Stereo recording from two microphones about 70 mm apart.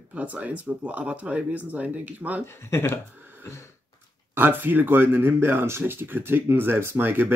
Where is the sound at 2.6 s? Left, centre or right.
Left.